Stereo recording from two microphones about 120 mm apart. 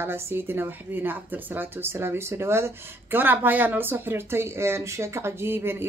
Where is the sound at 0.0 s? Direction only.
20° right (ahead or behind).